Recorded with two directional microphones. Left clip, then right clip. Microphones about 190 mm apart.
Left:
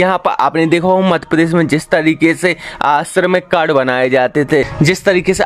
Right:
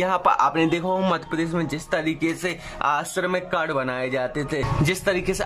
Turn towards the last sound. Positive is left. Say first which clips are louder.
# left 11 dB
turn(degrees=25)  # may be behind; listen again after turning